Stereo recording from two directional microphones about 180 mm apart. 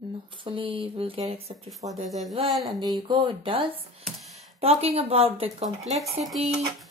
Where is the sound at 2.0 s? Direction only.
Centre (ahead or behind).